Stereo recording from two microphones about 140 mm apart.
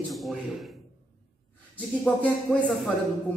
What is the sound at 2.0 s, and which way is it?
Speech, 10° left (ahead or behind).